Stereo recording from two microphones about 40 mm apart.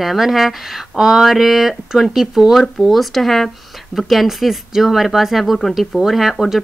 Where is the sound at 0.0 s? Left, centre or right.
Centre.